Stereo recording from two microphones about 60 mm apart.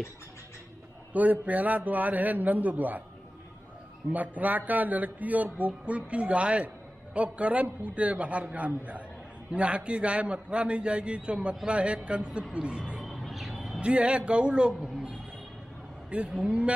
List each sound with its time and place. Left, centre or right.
1.1 s a man's voice: right
4.1 s a man's voice: right
13.0 s music: centre
13.7 s a man's voice: centre
16.1 s a man's voice: centre